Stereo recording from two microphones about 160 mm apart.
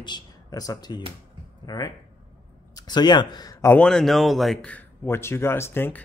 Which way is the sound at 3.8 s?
5° left (ahead or behind).